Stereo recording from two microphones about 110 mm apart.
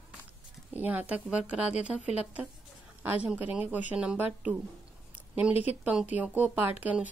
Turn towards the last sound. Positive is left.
turn(degrees=-10)  # may be behind; listen again after turning